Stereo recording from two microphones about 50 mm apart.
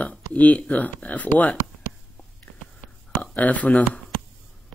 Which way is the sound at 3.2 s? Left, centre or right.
Left.